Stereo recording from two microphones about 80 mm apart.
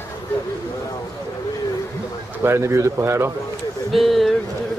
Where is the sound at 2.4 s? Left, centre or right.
Right.